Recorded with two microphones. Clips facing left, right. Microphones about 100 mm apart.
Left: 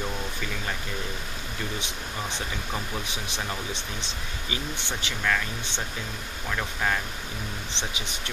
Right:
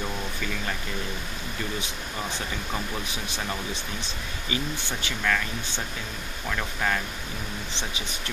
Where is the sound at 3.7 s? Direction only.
20° left (ahead or behind).